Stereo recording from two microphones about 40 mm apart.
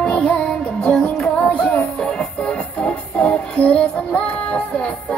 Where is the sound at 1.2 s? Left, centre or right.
Left.